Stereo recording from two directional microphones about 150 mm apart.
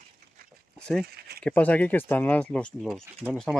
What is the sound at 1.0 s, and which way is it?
Speech, 90° right.